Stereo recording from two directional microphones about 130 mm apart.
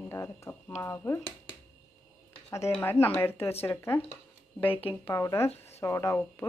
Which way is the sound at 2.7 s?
15° left (ahead or behind).